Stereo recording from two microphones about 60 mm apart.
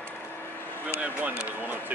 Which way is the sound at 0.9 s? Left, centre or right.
Right.